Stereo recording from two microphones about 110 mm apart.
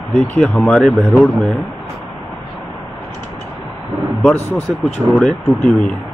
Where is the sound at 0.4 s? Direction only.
5° left (ahead or behind).